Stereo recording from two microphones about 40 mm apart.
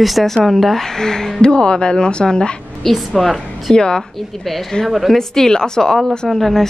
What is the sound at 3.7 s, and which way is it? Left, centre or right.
Speech, left.